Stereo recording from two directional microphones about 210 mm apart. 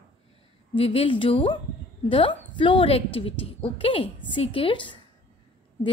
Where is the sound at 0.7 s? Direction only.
25° left (ahead or behind).